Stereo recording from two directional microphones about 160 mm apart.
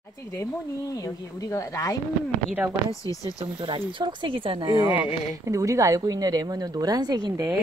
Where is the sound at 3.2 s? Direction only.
30° right (ahead or behind).